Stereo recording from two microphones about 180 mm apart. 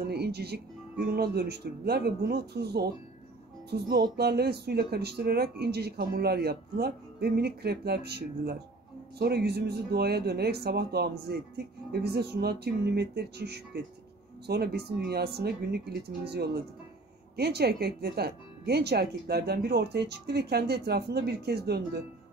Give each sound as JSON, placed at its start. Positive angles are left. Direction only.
{"t": 0.0, "sound": "speech", "side_deg": -65}